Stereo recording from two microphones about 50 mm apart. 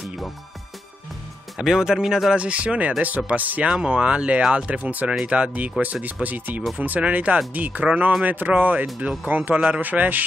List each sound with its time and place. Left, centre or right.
1.6 s speech: centre
2.3 s speech: right
3.6 s speech: centre
4.6 s speech: right
7.8 s speech: right
8.2 s speech: right